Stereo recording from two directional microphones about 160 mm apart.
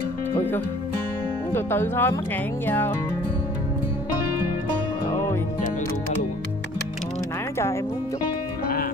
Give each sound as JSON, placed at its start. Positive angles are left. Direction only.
{"t": 1.5, "sound": "speech", "side_deg": 15}
{"t": 5.1, "sound": "music", "side_deg": 15}